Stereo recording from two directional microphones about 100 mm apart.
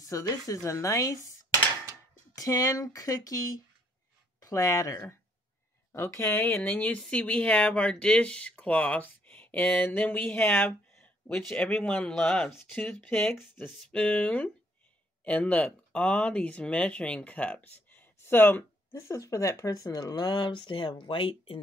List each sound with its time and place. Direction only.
0.1 s speech: 30° left (ahead or behind)
2.3 s speech: 35° left (ahead or behind); by 12.4 s 5° left (ahead or behind)
13.8 s speech: 10° left (ahead or behind)
18.9 s speech: 30° left (ahead or behind); by 21.5 s 65° left (ahead or behind)